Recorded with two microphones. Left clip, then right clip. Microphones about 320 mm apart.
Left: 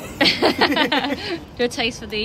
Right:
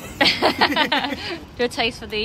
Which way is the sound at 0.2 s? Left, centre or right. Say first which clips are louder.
Even; centre.